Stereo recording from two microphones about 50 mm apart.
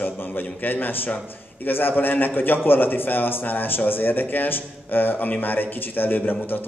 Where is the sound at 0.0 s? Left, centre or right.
Left.